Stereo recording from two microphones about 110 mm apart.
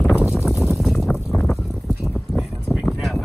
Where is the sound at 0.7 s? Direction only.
Centre (ahead or behind).